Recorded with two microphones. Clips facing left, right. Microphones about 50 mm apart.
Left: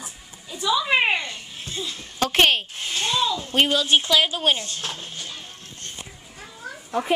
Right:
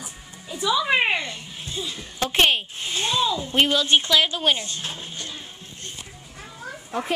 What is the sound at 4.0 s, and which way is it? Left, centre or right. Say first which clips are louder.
Speech: even; centre.